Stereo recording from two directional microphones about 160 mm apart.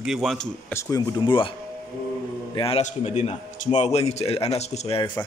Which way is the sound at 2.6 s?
35° left (ahead or behind).